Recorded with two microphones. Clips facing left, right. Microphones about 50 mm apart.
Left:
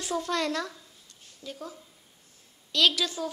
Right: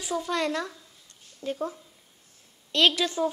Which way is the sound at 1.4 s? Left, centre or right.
Right.